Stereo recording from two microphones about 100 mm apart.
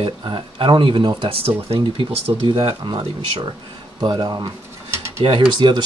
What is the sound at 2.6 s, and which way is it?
Speech, 50° right (ahead or behind).